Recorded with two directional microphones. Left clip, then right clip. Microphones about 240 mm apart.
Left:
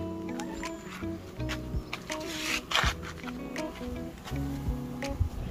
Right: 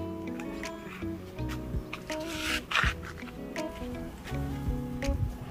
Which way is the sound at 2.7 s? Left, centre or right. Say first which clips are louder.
Even; left.